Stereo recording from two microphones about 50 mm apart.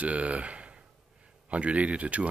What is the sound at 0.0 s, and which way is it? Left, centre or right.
Speech, right.